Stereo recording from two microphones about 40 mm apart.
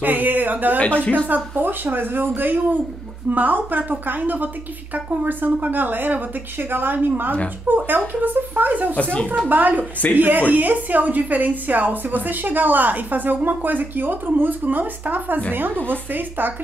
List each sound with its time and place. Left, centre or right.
0.0 s a woman's voice: right